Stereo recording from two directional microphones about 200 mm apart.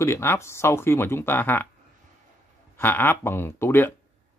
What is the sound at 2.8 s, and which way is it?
Speech, 10° left (ahead or behind).